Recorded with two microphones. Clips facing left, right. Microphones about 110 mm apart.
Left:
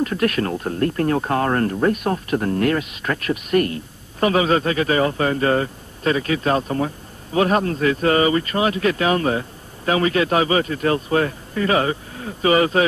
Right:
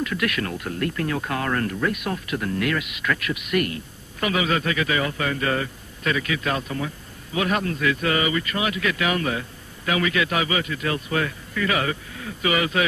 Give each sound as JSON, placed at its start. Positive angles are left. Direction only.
{"t": 0.0, "sound": "speech", "side_deg": 35}